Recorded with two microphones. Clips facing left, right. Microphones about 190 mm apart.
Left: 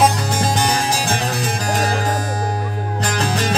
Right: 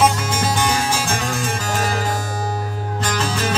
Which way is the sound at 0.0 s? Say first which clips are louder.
Left 1 dB; 35° left (ahead or behind).